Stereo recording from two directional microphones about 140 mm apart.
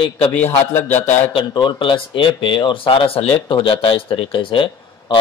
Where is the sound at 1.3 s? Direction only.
35° left (ahead or behind).